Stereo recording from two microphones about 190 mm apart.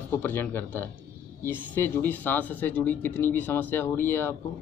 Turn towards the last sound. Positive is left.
turn(degrees=10)  # may be behind; listen again after turning